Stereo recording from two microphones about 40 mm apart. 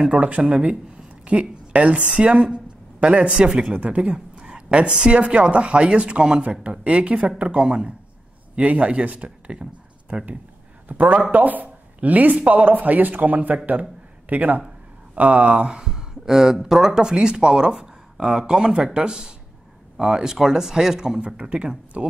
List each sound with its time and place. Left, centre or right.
0.1 s a woman's voice: right
3.4 s speech: centre
3.7 s a woman's voice: right
10.9 s speech: right
15.6 s speech: centre